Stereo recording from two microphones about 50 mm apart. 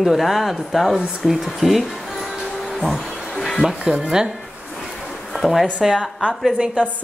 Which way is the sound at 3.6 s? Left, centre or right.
Centre.